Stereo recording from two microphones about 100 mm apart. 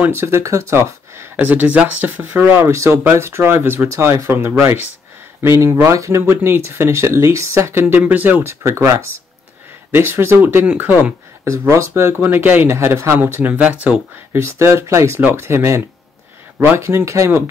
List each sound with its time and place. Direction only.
0.0 s speech: 25° right (ahead or behind)
14.3 s speech: 25° right (ahead or behind)